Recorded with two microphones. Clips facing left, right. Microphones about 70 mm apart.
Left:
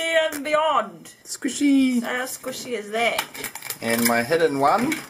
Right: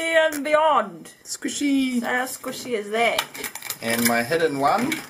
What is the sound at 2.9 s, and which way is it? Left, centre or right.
Speech, right.